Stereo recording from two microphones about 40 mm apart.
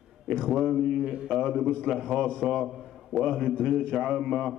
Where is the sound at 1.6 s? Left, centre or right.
Left.